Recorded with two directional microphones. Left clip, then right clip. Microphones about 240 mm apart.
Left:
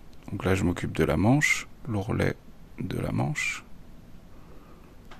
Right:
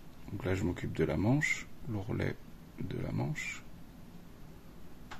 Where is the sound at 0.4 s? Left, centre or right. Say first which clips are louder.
Left 9 dB; left.